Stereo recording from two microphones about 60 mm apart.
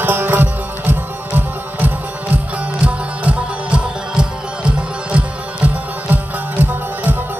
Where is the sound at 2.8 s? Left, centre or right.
Right.